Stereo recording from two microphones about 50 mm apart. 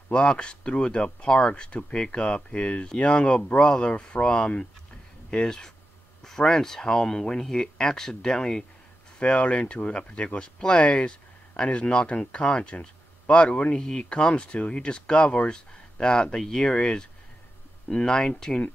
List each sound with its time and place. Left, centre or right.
0.1 s speech: centre